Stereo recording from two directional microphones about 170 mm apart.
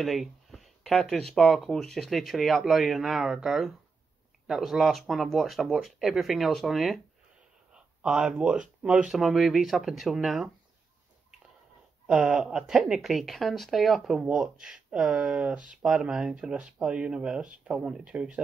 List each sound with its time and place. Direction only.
0.0 s speech: centre (ahead or behind)
12.1 s speech: 5° right (ahead or behind)